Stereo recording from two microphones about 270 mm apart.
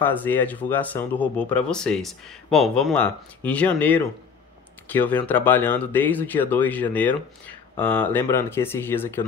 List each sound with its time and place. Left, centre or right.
0.0 s speech: centre